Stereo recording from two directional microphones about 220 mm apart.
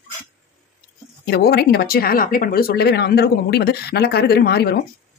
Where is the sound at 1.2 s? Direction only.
45° left (ahead or behind).